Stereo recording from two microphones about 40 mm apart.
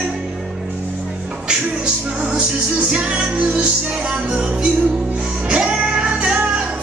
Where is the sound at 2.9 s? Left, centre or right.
Right.